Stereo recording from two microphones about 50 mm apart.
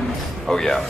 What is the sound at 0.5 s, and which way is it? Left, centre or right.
Speech, centre.